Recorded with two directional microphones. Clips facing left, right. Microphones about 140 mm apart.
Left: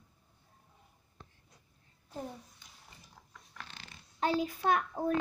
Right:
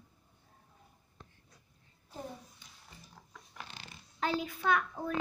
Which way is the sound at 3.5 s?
10° right (ahead or behind).